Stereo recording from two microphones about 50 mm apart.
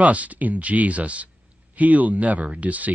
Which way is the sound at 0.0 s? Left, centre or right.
Right.